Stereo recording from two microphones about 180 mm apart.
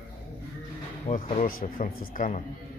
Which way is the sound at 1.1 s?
50° left (ahead or behind).